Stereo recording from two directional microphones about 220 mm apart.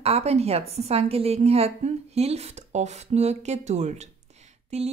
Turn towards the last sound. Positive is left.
turn(degrees=-30)  # may be behind; listen again after turning